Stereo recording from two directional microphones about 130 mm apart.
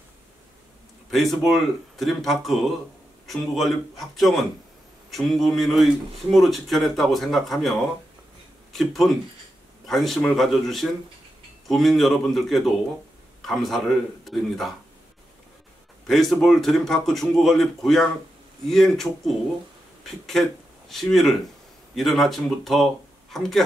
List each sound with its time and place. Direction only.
1.1 s speech: centre (ahead or behind)
8.7 s speech: centre (ahead or behind)
16.1 s speech: centre (ahead or behind)
20.9 s speech: centre (ahead or behind)